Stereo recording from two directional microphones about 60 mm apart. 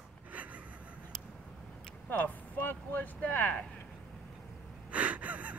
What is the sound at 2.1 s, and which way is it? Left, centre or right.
Vehicle, left.